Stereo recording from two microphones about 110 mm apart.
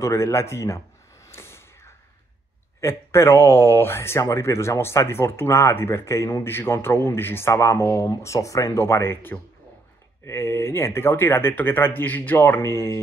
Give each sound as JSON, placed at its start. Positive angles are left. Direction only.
{"t": 0.0, "sound": "speech", "side_deg": 25}
{"t": 1.2, "sound": "a sound", "side_deg": 25}
{"t": 2.8, "sound": "speech", "side_deg": 25}